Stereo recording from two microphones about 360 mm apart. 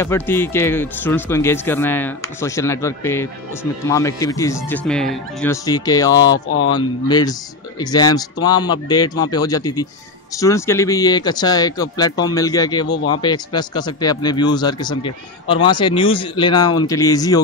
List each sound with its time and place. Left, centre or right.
0.0 s speech: centre